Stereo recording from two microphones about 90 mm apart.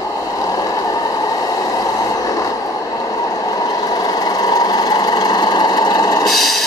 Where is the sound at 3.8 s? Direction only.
45° left (ahead or behind).